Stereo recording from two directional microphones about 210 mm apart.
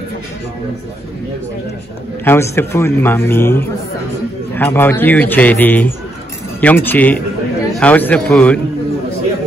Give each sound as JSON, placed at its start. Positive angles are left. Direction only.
{"t": 2.2, "sound": "a man's voice", "side_deg": 10}